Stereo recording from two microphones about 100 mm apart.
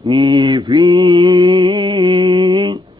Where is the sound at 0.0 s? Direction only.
40° right (ahead or behind).